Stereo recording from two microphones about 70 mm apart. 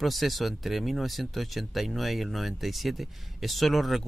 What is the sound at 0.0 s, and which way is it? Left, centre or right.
A man's voice, centre.